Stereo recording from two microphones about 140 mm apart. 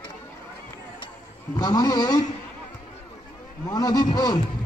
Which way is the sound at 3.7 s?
25° left (ahead or behind).